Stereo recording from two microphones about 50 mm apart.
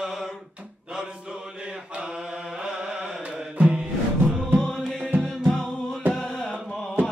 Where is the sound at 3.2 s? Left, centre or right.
Right.